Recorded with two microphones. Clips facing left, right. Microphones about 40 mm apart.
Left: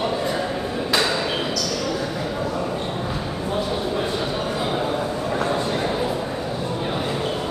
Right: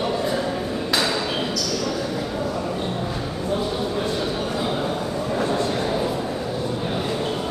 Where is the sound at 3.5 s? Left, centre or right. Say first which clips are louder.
Even; centre.